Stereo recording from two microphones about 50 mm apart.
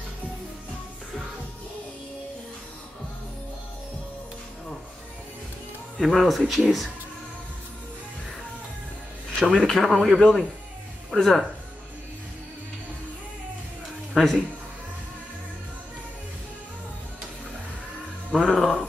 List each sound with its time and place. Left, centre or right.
5.9 s speech: centre
9.3 s a sound: centre
9.7 s speech: centre
14.1 s speech: centre
18.3 s speech: centre